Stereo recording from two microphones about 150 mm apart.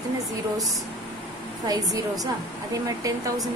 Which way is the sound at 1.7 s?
25° right (ahead or behind).